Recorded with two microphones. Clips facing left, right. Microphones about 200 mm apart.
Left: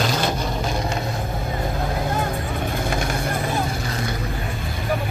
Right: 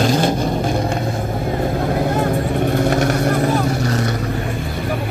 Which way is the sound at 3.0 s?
75° right (ahead or behind).